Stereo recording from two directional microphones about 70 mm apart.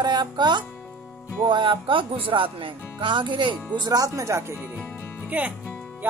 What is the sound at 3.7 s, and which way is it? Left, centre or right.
Music, right.